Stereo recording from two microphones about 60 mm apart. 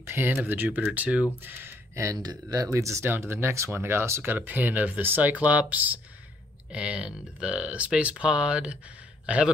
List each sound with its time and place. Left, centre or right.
0.0 s speech: right
1.4 s speech: right
2.2 s speech: right
3.1 s speech: right
4.2 s speech: right